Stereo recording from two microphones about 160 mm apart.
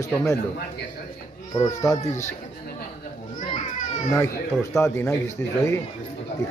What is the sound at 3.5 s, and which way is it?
Children playing, 50° left (ahead or behind).